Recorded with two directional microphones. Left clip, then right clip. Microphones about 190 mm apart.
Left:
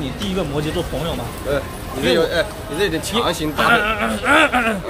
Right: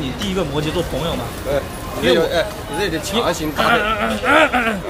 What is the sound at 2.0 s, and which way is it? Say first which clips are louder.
Speech: right 1 dB; 40° left (ahead or behind).